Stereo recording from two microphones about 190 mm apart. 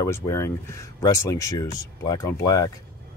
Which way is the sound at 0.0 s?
15° left (ahead or behind).